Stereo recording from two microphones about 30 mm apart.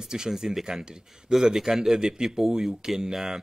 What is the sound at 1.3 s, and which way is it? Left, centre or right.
A man's voice, centre.